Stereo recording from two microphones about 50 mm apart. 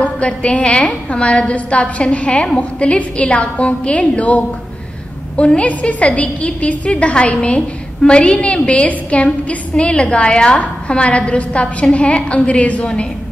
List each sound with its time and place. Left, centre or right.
0.0 s a woman's voice: left
5.6 s a woman's voice: left